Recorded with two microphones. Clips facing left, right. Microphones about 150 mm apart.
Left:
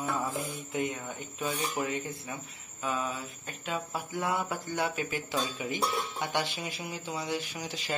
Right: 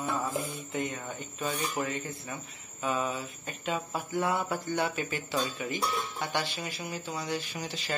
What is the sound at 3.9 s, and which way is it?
Speech, 10° left (ahead or behind).